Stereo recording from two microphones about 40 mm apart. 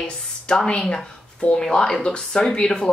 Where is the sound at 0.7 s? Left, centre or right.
Left.